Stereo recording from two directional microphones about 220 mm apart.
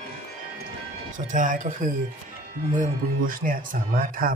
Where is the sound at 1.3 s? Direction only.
35° right (ahead or behind).